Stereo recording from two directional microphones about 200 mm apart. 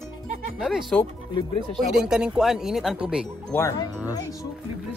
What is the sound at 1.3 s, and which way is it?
Speech, 25° left (ahead or behind).